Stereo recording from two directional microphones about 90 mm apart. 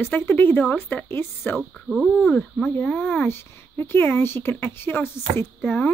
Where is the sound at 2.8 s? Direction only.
15° left (ahead or behind).